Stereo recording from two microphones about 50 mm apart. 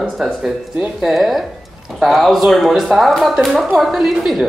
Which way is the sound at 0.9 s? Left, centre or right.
Centre.